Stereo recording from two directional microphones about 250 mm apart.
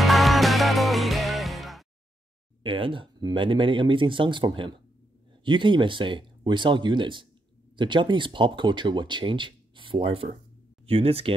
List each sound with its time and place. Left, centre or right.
0.0 s music: centre
2.6 s speech: right